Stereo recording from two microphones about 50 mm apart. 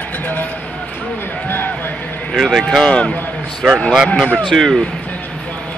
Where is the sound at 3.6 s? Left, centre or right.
Centre.